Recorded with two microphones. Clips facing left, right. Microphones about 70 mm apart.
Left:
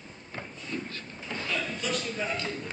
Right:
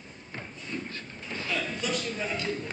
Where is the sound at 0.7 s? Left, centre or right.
Right.